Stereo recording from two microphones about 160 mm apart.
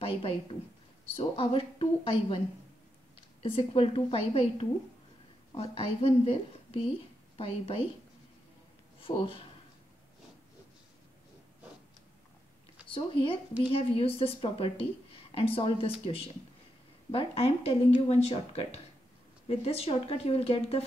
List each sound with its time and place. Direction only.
0.0 s speech: 35° left (ahead or behind)
3.4 s speech: 35° left (ahead or behind)
9.0 s speech: 35° left (ahead or behind)
12.8 s speech: 35° left (ahead or behind)
17.1 s speech: 35° left (ahead or behind)